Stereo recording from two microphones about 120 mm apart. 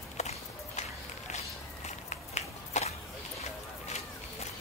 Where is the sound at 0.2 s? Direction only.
70° left (ahead or behind).